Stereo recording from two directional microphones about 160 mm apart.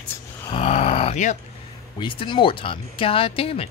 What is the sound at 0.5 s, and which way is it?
Roar, 40° left (ahead or behind).